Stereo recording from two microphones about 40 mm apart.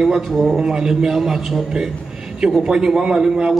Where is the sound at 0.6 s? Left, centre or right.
Centre.